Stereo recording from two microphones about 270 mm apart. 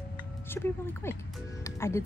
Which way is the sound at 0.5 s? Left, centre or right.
Centre.